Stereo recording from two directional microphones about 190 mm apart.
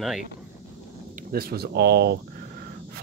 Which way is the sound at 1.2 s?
55° right (ahead or behind).